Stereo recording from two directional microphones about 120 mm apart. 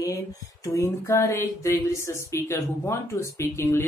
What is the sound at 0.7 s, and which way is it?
Speech, 25° left (ahead or behind).